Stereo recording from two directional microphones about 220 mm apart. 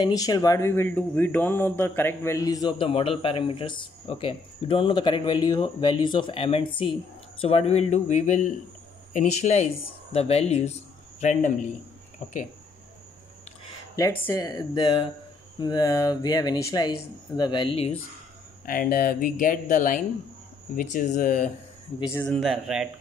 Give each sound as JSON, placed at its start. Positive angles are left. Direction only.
{"t": 0.0, "sound": "speech", "side_deg": 15}
{"t": 13.9, "sound": "speech", "side_deg": 15}
{"t": 18.7, "sound": "speech", "side_deg": 40}
{"t": 22.1, "sound": "speech", "side_deg": 5}